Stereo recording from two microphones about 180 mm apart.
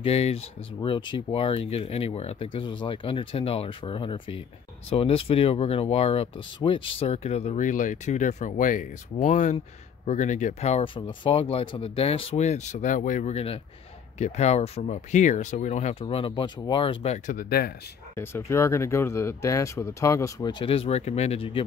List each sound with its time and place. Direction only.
0.0 s speech: 35° left (ahead or behind)
17.4 s speech: 55° left (ahead or behind)
18.1 s speech: 15° left (ahead or behind); by 21.6 s 35° left (ahead or behind)